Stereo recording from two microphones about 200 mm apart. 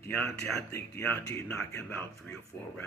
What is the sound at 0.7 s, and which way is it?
Speech, 10° left (ahead or behind).